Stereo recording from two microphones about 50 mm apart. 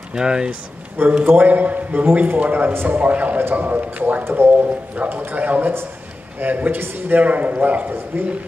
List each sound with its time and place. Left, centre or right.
0.1 s speech: centre
1.2 s a man's voice: right
2.7 s a man's voice: right
3.0 s a man's voice: right
8.1 s a man's voice: right